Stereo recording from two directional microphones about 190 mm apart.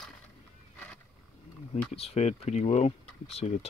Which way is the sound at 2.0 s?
35° left (ahead or behind).